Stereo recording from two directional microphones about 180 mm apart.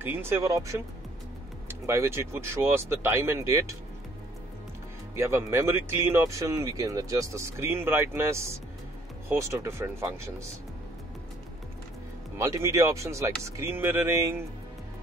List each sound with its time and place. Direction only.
0.0 s speech: 10° right (ahead or behind)
5.1 s speech: 15° right (ahead or behind)
12.4 s speech: 15° right (ahead or behind)